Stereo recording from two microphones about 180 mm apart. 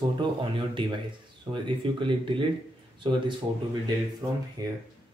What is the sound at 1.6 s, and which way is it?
Speech, 30° right (ahead or behind).